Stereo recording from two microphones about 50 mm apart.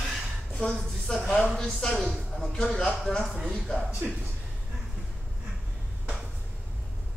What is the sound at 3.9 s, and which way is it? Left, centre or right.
Speech, right.